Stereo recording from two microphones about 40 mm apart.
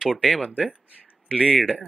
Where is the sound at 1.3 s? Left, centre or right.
Right.